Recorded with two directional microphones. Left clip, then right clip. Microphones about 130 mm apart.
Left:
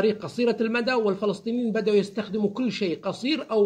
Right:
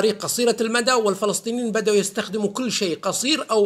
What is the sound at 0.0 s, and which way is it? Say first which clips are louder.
A man's voice: right 4 dB; 20° right (ahead or behind).